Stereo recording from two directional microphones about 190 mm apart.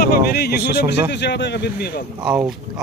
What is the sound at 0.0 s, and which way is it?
Speech, 55° left (ahead or behind).